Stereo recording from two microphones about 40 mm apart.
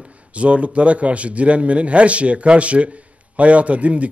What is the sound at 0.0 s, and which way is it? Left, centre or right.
A man's voice, right.